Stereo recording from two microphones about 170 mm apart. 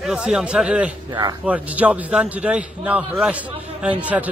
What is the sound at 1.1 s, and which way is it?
Speech, 25° right (ahead or behind).